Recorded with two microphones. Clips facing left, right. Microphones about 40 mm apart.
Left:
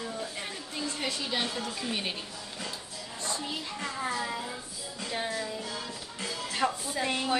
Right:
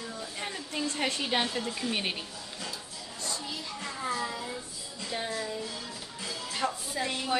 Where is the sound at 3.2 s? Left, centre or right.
Left.